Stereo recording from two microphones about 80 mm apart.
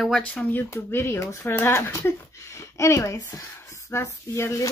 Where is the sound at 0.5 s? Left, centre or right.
Left.